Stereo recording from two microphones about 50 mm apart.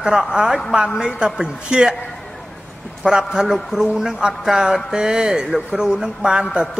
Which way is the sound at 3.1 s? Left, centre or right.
Centre.